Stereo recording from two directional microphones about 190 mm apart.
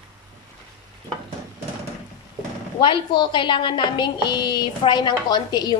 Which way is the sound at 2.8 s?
25° left (ahead or behind).